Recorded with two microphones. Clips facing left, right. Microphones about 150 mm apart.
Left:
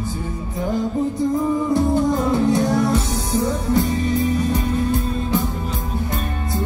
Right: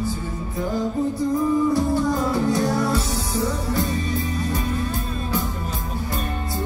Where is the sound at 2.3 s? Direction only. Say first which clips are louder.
Left 3 dB; 20° left (ahead or behind).